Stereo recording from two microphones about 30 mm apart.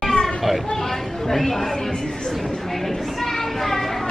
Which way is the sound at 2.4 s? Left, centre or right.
Centre.